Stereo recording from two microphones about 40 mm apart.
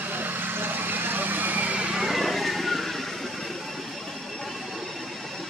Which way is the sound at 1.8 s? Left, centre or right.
Right.